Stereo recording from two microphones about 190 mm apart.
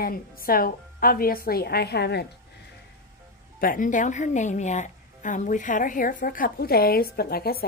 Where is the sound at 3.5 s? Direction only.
45° left (ahead or behind).